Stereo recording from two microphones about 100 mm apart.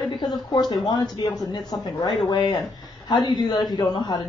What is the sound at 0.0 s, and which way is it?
Speech, 45° left (ahead or behind).